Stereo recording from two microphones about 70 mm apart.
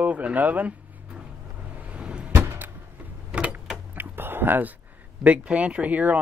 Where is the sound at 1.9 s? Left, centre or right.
Centre.